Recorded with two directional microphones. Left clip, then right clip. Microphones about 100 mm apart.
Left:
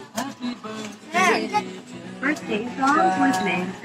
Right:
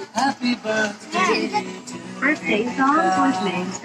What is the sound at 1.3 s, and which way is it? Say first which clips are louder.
A woman's voice: right 1 dB; 30° right (ahead or behind).